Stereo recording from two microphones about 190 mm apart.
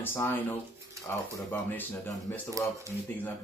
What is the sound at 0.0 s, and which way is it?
Speech, 10° left (ahead or behind).